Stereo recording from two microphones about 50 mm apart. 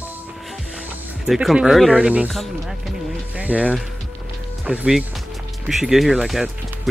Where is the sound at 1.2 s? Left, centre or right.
Centre.